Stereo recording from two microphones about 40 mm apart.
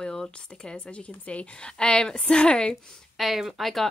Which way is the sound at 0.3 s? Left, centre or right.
Left.